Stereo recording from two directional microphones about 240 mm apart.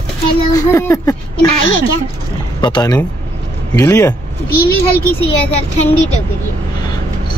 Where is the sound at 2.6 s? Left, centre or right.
Centre.